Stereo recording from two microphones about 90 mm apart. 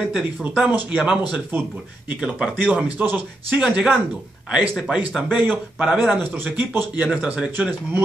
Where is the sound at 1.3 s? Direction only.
20° right (ahead or behind).